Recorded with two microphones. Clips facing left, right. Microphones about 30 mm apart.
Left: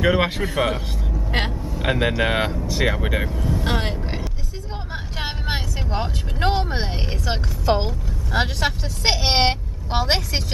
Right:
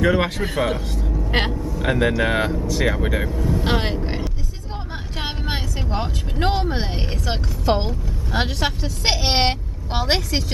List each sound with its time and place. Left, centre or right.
0.0 s speech: centre
1.3 s speech: centre
1.6 s speech: centre
2.6 s speech: left
2.9 s speech: centre
3.5 s speech: centre
4.9 s vehicle: centre
6.9 s speech: centre